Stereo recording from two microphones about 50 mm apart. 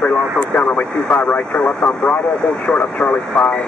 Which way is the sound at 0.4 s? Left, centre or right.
Left.